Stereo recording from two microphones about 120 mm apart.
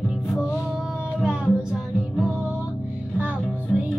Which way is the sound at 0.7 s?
5° right (ahead or behind).